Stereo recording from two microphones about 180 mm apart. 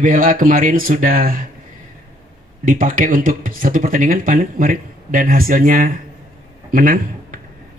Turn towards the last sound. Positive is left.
turn(degrees=-50)  # may be behind; listen again after turning